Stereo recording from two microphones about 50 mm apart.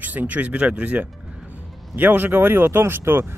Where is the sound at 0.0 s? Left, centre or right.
Right.